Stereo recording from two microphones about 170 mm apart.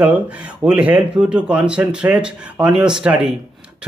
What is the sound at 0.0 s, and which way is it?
Speech, 10° right (ahead or behind).